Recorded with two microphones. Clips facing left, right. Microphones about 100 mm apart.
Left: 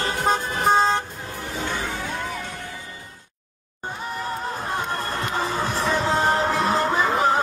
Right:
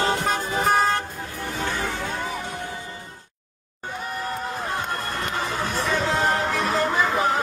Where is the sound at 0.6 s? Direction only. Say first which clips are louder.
Left 2 dB; 25° left (ahead or behind).